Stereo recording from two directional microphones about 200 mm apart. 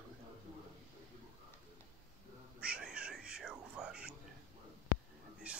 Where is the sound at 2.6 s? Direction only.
5° right (ahead or behind).